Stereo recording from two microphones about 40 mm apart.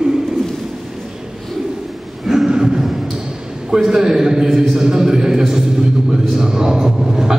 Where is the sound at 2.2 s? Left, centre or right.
Centre.